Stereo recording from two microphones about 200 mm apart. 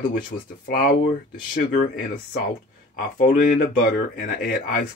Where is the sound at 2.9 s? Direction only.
40° left (ahead or behind).